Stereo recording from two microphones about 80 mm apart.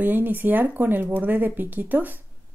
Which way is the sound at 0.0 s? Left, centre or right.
Right.